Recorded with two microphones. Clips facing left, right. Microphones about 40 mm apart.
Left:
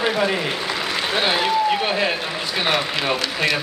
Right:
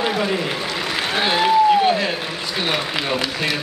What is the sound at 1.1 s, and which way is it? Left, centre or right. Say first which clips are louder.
Speech: right 3 dB; centre.